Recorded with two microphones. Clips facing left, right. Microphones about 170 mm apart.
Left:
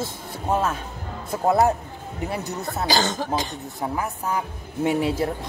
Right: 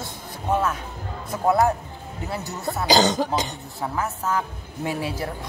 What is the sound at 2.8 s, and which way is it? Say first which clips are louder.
Speech: right 5 dB; 20° right (ahead or behind).